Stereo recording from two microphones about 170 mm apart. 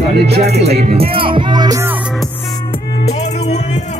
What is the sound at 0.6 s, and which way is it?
Speech, 40° right (ahead or behind).